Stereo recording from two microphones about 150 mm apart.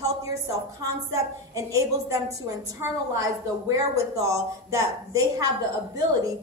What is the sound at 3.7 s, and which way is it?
A woman's voice, 20° right (ahead or behind).